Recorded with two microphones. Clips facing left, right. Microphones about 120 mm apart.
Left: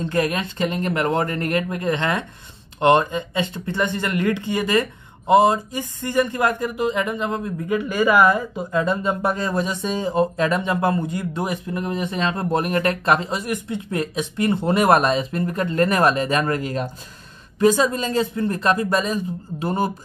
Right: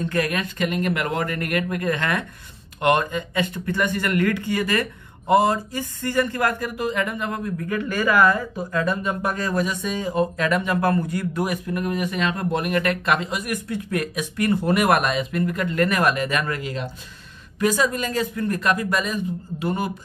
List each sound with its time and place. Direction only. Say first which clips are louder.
0.0 s speech: left 2 dB; 25° left (ahead or behind); by 16.9 s 45° left (ahead or behind)
17.6 s speech: left 4 dB; 25° left (ahead or behind)